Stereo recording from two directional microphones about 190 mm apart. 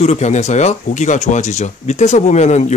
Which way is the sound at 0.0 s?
35° left (ahead or behind).